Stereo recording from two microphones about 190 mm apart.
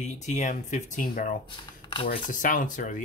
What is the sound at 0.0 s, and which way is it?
Speech, 40° left (ahead or behind).